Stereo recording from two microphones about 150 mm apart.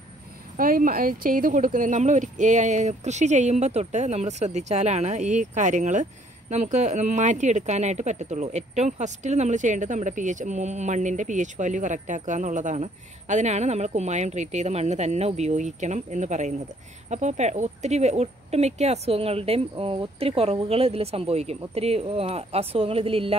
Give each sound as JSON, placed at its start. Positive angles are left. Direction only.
{"t": 0.6, "sound": "speech", "side_deg": -70}